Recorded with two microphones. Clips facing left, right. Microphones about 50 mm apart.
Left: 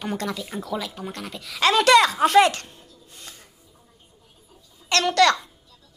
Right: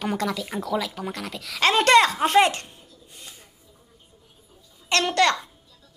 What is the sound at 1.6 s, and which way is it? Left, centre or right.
A woman's voice, right.